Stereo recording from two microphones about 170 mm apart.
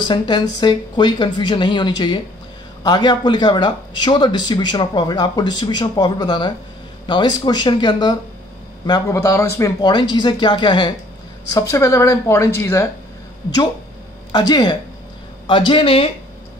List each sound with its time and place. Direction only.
0.6 s speech: 25° left (ahead or behind)
14.3 s speech: 25° left (ahead or behind)